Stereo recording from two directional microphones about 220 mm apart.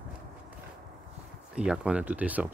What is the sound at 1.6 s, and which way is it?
Speech, 5° right (ahead or behind).